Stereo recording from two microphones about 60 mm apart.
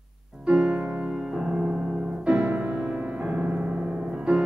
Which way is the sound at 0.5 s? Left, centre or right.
Centre.